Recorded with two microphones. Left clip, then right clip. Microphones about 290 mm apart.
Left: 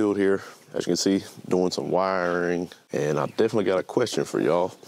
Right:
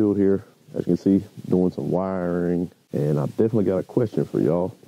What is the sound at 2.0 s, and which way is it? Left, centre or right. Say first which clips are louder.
Speech: left 4 dB; centre.